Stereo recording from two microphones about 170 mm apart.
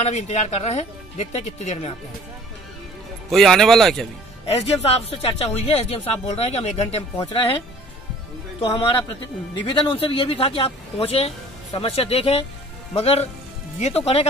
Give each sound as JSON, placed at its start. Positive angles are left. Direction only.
{"t": 0.0, "sound": "speech", "side_deg": 40}
{"t": 3.3, "sound": "speech", "side_deg": 0}
{"t": 4.5, "sound": "speech", "side_deg": 35}
{"t": 9.7, "sound": "speech", "side_deg": 30}